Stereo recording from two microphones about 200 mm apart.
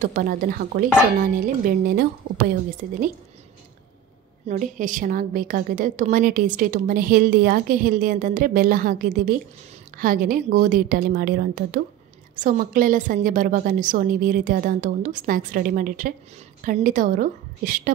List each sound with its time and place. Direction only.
0.0 s a woman's voice: 45° right (ahead or behind)
4.5 s a woman's voice: 40° right (ahead or behind)